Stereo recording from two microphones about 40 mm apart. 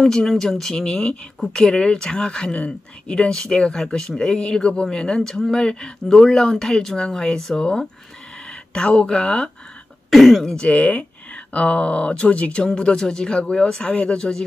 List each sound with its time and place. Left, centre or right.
0.0 s speech: centre
5.3 s speech: centre
5.6 s speech: centre
7.0 s speech: left
8.5 s speech: left
10.0 s speech: centre
10.6 s speech: left; by 14.4 s centre